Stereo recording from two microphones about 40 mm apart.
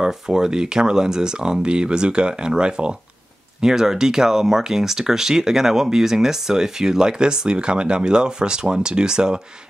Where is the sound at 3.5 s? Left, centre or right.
Centre.